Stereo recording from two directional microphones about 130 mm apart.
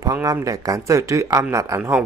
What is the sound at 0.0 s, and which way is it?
Speech, 25° right (ahead or behind).